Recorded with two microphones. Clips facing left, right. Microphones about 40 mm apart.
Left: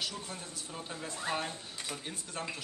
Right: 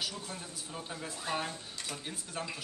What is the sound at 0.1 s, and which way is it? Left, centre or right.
Speech, centre.